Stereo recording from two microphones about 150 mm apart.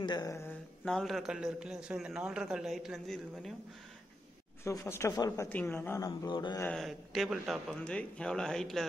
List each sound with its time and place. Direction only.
0.0 s speech: 25° left (ahead or behind)
0.5 s a man's voice: 5° left (ahead or behind)
4.6 s speech: 20° left (ahead or behind)
6.6 s a man's voice: 5° left (ahead or behind)